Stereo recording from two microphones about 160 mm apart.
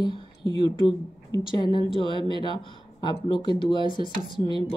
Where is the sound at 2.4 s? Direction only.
30° left (ahead or behind).